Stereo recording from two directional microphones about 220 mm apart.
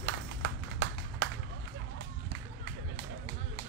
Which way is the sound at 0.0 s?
50° right (ahead or behind).